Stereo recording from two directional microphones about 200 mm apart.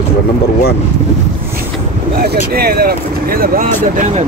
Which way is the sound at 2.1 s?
50° right (ahead or behind).